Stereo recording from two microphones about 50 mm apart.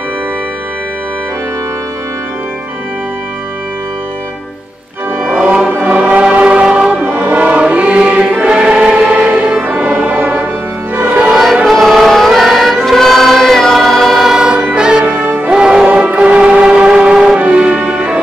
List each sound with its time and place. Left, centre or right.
5.7 s music: right
6.0 s music: right
7.0 s choir: right
7.7 s music: right
9.1 s music: right
11.6 s choir: centre
14.3 s choir: centre
14.8 s music: centre
15.0 s music: right
15.5 s music: centre